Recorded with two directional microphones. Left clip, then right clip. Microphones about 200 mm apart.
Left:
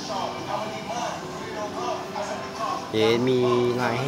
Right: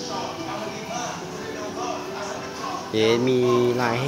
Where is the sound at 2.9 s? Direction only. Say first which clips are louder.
Right 2 dB; 5° right (ahead or behind).